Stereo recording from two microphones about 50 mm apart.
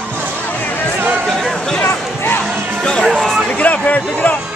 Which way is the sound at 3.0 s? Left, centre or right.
Centre.